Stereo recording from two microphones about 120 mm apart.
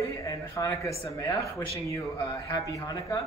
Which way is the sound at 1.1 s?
25° left (ahead or behind).